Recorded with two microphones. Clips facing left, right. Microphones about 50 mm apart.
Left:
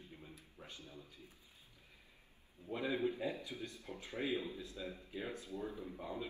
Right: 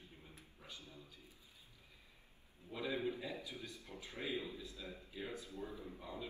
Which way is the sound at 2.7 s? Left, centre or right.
Left.